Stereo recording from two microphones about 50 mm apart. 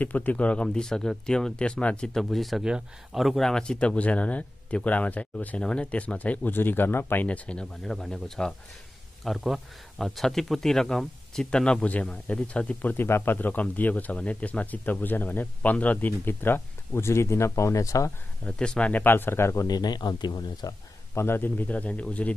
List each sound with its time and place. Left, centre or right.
0.0 s speech: left
2.1 s speech: centre
2.6 s speech: centre
3.2 s speech: centre
3.4 s speech: centre; by 5.6 s left
5.6 s speech: left
6.5 s speech: left
7.2 s speech: left
7.8 s speech: centre
12.8 s speech: left
18.4 s speech: left
18.9 s speech: left
21.1 s a man's voice: left
21.4 s speech: left